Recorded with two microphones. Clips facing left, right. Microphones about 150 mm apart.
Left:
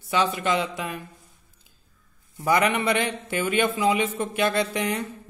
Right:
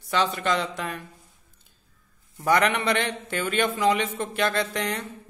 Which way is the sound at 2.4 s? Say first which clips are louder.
Even; 5° left (ahead or behind).